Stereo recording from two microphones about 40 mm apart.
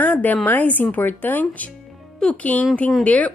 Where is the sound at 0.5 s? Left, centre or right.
Left.